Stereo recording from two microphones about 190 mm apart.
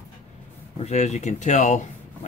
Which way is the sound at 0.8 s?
35° left (ahead or behind).